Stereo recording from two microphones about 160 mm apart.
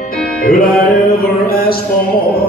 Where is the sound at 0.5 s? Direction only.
65° left (ahead or behind).